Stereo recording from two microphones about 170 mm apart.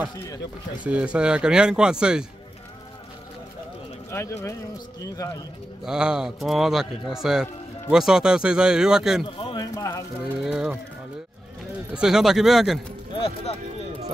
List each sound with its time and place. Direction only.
0.8 s a man's voice: 5° right (ahead or behind)
4.1 s speech: 15° left (ahead or behind)
5.9 s a man's voice: 5° right (ahead or behind)
9.2 s speech: 25° left (ahead or behind)
10.2 s a man's voice: 5° right (ahead or behind)
11.9 s a man's voice: 5° right (ahead or behind)